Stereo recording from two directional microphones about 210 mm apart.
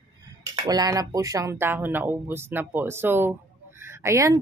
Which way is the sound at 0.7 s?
20° right (ahead or behind).